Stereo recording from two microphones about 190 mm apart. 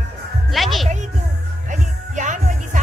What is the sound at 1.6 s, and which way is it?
Music, 40° right (ahead or behind).